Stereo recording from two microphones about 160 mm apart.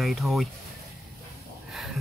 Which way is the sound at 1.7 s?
Centre (ahead or behind).